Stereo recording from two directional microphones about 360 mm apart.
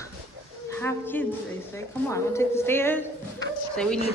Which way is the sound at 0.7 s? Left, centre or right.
Centre.